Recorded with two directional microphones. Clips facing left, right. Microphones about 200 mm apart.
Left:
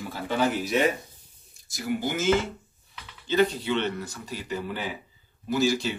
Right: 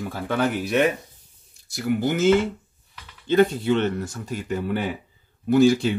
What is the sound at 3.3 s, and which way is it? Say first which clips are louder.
Speech: right 5 dB; 50° right (ahead or behind).